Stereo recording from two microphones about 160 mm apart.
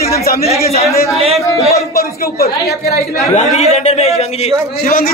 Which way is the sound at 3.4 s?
45° left (ahead or behind).